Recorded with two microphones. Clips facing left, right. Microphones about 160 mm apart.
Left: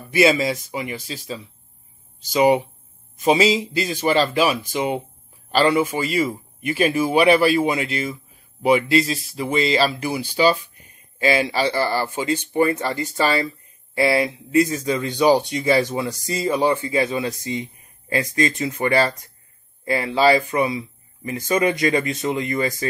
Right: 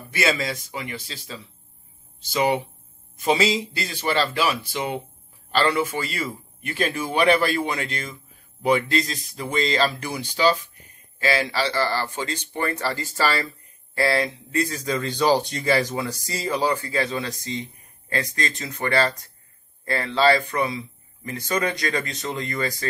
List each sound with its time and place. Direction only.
0.1 s speech: 20° left (ahead or behind)